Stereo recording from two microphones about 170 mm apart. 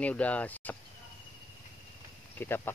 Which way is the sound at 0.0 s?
10° left (ahead or behind).